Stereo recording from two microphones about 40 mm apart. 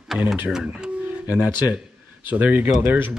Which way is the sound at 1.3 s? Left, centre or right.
Right.